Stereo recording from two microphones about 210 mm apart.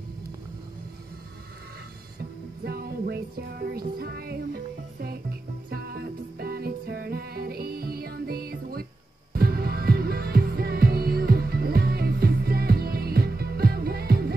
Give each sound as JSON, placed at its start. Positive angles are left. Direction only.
{"t": 2.6, "sound": "music", "side_deg": -50}
{"t": 5.7, "sound": "music", "side_deg": -45}